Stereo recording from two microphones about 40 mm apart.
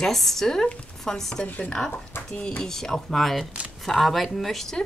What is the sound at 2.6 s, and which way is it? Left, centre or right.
A woman's voice, centre.